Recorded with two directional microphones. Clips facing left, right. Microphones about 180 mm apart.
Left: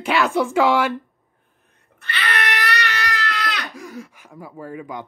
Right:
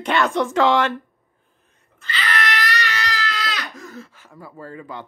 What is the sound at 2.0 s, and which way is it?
Crying, 60° left (ahead or behind).